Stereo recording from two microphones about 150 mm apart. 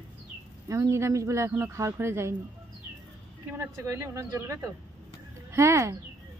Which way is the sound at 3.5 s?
20° right (ahead or behind).